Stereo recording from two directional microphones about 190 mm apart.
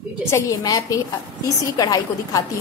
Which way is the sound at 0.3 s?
15° left (ahead or behind).